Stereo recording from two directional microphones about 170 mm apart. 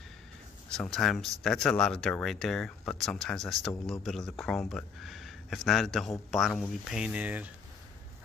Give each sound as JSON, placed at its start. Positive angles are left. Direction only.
{"t": 0.7, "sound": "speech", "side_deg": 0}